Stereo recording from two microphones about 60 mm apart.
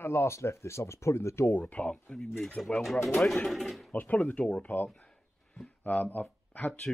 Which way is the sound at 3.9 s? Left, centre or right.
Left.